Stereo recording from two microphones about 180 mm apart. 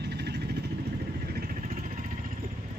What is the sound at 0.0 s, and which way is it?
Vehicle, 70° right (ahead or behind).